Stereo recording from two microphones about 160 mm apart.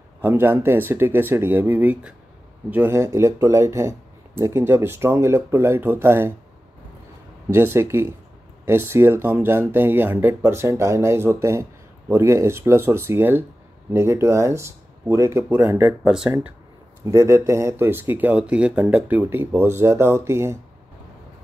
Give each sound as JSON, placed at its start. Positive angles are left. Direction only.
{"t": 0.2, "sound": "speech", "side_deg": -15}
{"t": 7.4, "sound": "speech", "side_deg": -15}
{"t": 17.0, "sound": "speech", "side_deg": -20}